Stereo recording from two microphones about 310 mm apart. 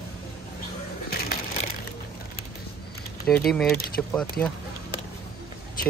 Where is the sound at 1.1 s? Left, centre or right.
Left.